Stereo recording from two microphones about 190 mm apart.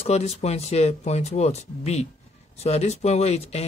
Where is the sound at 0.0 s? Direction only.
35° left (ahead or behind).